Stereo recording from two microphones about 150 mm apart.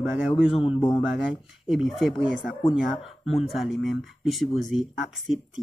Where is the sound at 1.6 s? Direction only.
Centre (ahead or behind).